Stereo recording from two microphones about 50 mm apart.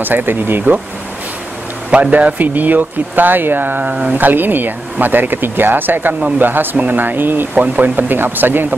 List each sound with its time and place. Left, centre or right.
0.0 s speech: right
1.9 s speech: right
3.9 s speech: right
4.2 s speech: right
7.6 s speech: right